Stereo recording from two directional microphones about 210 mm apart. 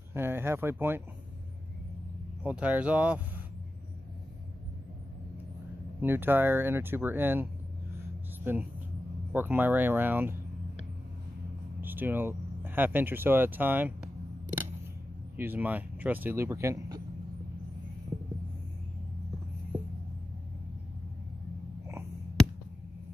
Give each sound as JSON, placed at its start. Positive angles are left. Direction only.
{"t": 0.1, "sound": "speech", "side_deg": -10}
{"t": 2.4, "sound": "speech", "side_deg": -5}
{"t": 5.9, "sound": "speech", "side_deg": -10}
{"t": 8.5, "sound": "speech", "side_deg": -10}
{"t": 11.8, "sound": "speech", "side_deg": -10}
{"t": 15.3, "sound": "speech", "side_deg": -10}
{"t": 18.1, "sound": "a sound", "side_deg": -30}